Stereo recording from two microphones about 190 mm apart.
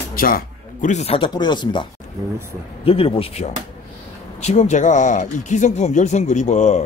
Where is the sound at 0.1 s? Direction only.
50° left (ahead or behind).